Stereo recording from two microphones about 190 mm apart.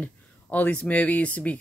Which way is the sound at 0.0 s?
10° left (ahead or behind).